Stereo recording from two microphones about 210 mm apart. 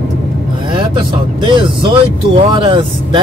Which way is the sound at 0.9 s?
20° right (ahead or behind).